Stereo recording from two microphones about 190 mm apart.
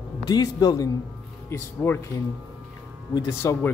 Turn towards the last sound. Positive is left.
turn(degrees=15)  # may be behind; listen again after turning